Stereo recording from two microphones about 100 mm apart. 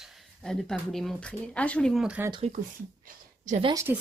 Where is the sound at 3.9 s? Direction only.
25° right (ahead or behind).